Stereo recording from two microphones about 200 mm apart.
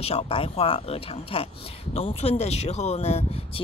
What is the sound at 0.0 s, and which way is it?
Speech, 30° left (ahead or behind).